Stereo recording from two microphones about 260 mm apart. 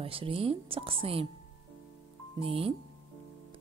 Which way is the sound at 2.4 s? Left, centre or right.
Right.